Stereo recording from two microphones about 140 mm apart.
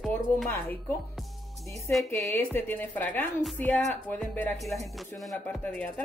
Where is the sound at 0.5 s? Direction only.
15° left (ahead or behind).